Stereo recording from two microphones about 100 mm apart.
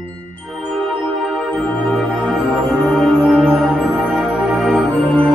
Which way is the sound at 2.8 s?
5° left (ahead or behind).